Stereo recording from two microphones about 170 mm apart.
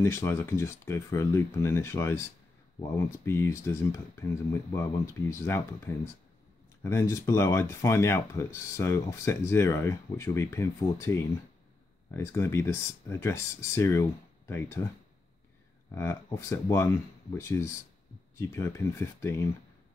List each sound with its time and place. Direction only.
0.0 s speech: 15° left (ahead or behind)
6.8 s speech: 15° left (ahead or behind)
15.9 s speech: 15° left (ahead or behind)